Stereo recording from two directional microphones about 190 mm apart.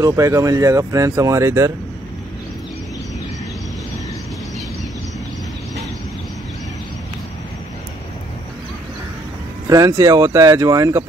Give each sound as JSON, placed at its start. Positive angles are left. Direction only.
{"t": 0.0, "sound": "speech", "side_deg": -15}
{"t": 9.7, "sound": "speech", "side_deg": -15}